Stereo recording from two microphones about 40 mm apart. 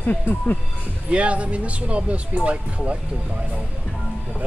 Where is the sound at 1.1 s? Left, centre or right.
Right.